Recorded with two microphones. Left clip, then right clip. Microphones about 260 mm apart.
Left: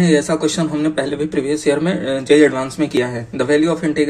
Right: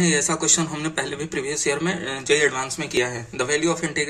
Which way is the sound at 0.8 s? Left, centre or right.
Right.